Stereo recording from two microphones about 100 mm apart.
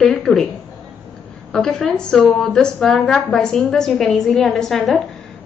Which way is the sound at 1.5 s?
5° left (ahead or behind).